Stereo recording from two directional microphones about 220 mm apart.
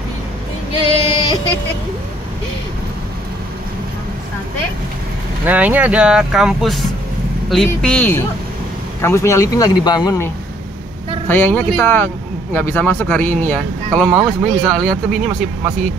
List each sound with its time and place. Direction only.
0.8 s female singing: 25° left (ahead or behind)
5.4 s speech: 5° right (ahead or behind)